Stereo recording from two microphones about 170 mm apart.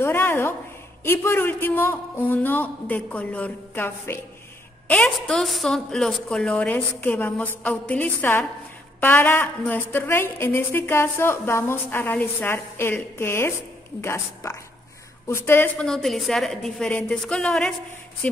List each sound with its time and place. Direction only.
0.0 s a woman's voice: 15° left (ahead or behind)